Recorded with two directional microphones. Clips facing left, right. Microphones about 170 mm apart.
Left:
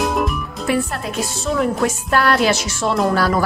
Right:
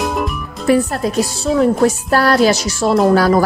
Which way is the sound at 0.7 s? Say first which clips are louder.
Right 7 dB; 40° right (ahead or behind).